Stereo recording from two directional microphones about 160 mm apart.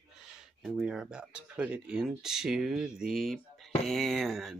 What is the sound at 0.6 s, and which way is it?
Speech, centre (ahead or behind).